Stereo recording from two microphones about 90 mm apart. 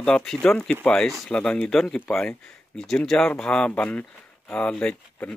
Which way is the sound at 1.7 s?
5° left (ahead or behind).